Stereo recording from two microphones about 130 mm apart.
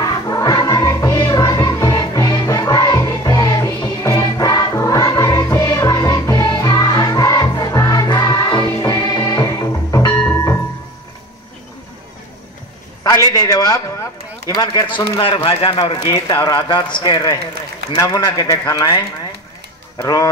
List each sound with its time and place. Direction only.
0.0 s music: 30° left (ahead or behind)
13.0 s a sound: 25° left (ahead or behind)
14.5 s a man's voice: 35° left (ahead or behind)